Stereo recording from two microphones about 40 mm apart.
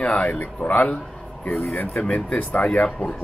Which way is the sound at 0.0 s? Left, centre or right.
Left.